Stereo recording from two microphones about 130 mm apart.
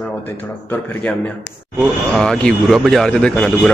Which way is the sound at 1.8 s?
5° left (ahead or behind).